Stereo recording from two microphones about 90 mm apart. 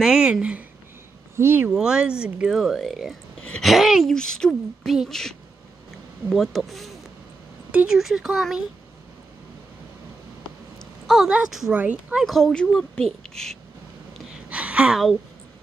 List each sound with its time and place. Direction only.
0.0 s speech: 10° right (ahead or behind)
1.3 s speech: 30° right (ahead or behind)
1.7 s speech: 10° right (ahead or behind)
11.1 s a woman's voice: centre (ahead or behind)
11.7 s speech: 15° right (ahead or behind)
12.2 s speech: centre (ahead or behind)
14.3 s a sound: 15° right (ahead or behind)